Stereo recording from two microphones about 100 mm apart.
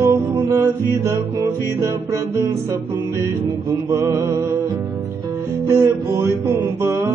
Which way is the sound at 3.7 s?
30° right (ahead or behind).